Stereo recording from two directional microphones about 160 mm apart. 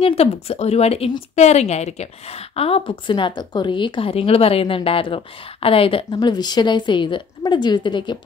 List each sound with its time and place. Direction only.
0.0 s speech: 40° left (ahead or behind)